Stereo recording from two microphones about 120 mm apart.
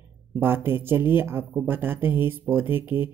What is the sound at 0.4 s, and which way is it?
Speech, 20° right (ahead or behind).